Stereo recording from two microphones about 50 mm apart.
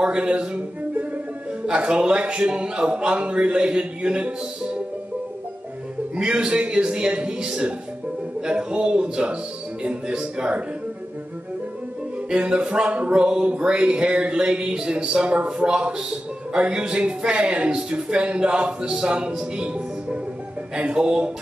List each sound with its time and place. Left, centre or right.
0.0 s speech: centre
1.7 s speech: centre
6.1 s a man's voice: centre
12.3 s speech: centre